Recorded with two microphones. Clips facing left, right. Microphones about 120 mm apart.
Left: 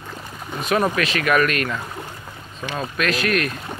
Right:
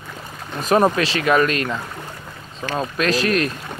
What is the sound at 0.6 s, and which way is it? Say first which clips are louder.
Speech: right 4 dB; 35° right (ahead or behind).